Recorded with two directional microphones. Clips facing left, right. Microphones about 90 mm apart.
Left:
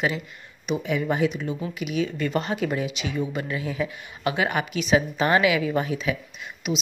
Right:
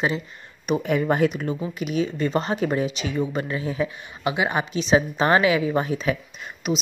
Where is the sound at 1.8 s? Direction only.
35° right (ahead or behind).